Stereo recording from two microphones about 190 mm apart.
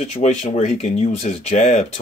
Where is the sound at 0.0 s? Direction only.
35° left (ahead or behind).